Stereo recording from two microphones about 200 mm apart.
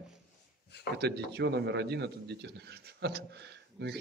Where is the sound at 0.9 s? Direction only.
55° right (ahead or behind).